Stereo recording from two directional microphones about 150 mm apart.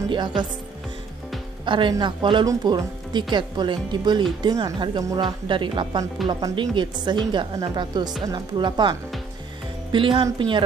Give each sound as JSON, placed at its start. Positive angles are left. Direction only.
{"t": 1.7, "sound": "a woman's voice", "side_deg": -30}
{"t": 9.9, "sound": "speech", "side_deg": -35}